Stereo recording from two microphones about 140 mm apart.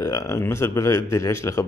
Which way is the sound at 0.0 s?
20° left (ahead or behind).